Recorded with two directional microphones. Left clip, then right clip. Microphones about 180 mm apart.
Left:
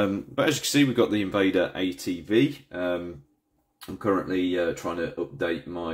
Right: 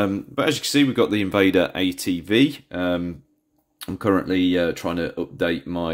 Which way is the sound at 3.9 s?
50° right (ahead or behind).